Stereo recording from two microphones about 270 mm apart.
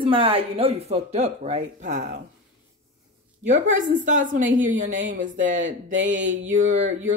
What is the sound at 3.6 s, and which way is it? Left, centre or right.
Speech, right.